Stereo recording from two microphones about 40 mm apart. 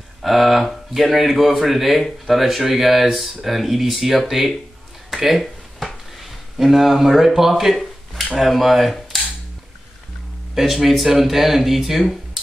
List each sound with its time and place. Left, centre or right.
0.2 s speech: centre
5.1 s a sound: centre
6.6 s speech: centre
10.5 s speech: centre